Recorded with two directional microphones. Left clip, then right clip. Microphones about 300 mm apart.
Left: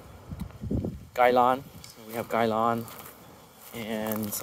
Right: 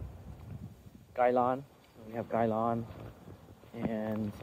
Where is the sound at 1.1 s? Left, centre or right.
Centre.